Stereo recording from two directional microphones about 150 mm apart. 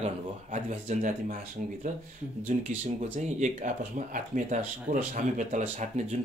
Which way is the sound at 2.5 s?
50° right (ahead or behind).